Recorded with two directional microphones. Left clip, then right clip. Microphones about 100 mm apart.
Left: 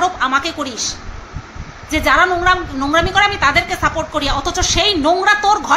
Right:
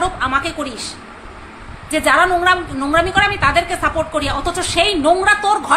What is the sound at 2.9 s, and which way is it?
A woman's voice, 20° left (ahead or behind).